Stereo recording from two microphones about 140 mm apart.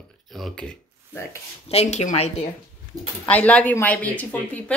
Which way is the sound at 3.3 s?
10° left (ahead or behind).